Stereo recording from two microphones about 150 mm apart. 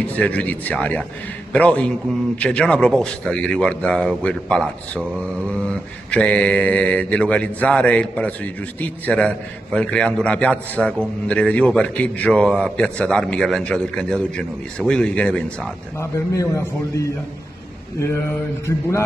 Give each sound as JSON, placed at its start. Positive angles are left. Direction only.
{"t": 0.0, "sound": "a man's voice", "side_deg": 10}
{"t": 16.0, "sound": "a man's voice", "side_deg": 20}